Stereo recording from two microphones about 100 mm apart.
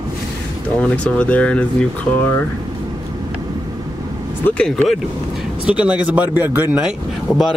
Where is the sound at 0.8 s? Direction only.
10° left (ahead or behind).